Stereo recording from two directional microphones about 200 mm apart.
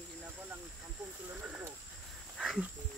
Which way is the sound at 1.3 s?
10° right (ahead or behind).